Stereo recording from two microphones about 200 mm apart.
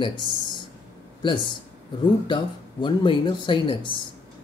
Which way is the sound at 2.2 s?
25° left (ahead or behind).